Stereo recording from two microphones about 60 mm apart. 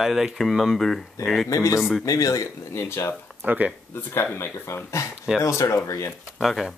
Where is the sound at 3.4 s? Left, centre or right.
Right.